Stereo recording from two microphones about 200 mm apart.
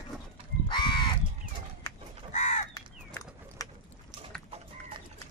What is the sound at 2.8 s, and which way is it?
Bird, 15° left (ahead or behind).